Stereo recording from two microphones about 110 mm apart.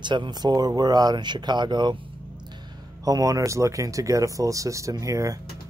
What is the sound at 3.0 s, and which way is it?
Speech, 30° right (ahead or behind).